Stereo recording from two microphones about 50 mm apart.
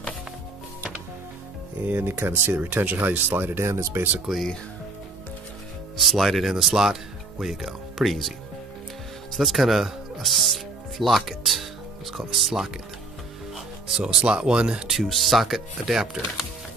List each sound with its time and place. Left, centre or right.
2.0 s speech: right
5.9 s speech: centre
9.3 s speech: centre
13.8 s speech: centre
14.9 s speech: centre